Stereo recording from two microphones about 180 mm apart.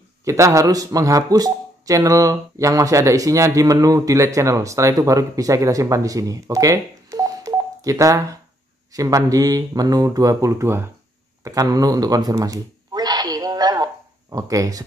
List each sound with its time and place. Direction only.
0.2 s speech: 15° right (ahead or behind)
11.4 s a sound: 20° right (ahead or behind)
14.3 s speech: 20° right (ahead or behind)